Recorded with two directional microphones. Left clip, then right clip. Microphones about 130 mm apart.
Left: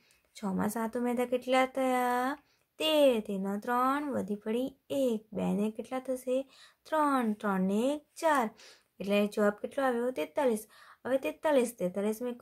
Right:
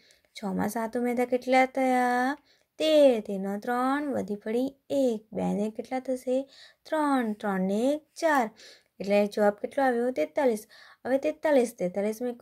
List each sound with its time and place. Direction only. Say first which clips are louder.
0.3 s a woman's voice: right 3 dB; 20° right (ahead or behind)